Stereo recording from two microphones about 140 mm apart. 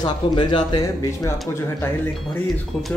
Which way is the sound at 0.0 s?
30° left (ahead or behind).